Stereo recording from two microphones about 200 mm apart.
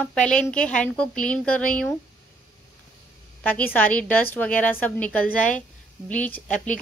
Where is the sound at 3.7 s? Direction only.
5° left (ahead or behind).